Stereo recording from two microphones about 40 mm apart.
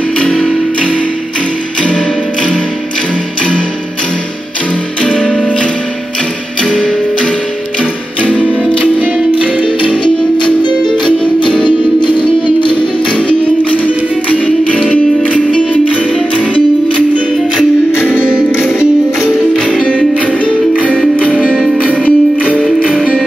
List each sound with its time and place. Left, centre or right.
5.0 s music: centre
6.6 s music: left
8.2 s music: right
11.1 s music: left
13.1 s music: left
17.9 s music: right
22.0 s music: left